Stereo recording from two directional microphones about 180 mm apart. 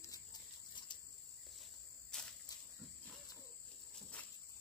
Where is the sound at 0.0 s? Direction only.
20° left (ahead or behind).